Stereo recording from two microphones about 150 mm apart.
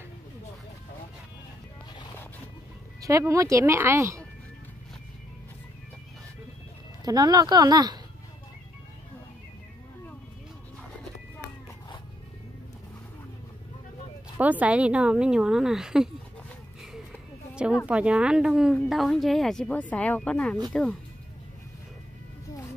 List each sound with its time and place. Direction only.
3.0 s speech: 20° right (ahead or behind)
7.1 s speech: 25° right (ahead or behind)
14.4 s a woman's voice: 10° right (ahead or behind)
17.8 s speech: 5° right (ahead or behind)